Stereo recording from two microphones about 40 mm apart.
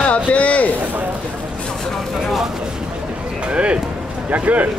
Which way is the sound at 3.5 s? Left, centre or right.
Right.